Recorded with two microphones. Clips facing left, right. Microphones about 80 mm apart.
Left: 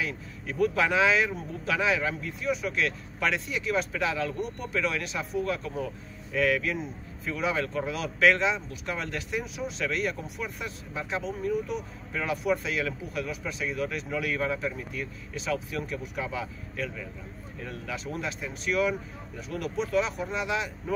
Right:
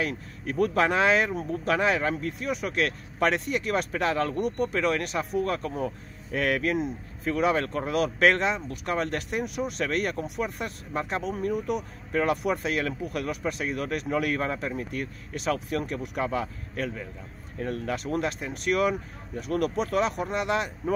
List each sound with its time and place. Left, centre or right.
0.0 s speech: right
12.1 s speech: right